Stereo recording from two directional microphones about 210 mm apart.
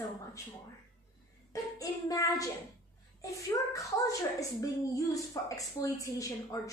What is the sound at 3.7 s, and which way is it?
A woman's voice, 15° left (ahead or behind).